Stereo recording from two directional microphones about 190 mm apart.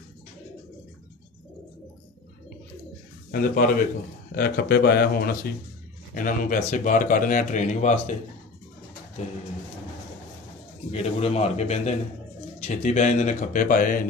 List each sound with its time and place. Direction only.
3.3 s speech: 50° left (ahead or behind)
10.9 s speech: 35° left (ahead or behind)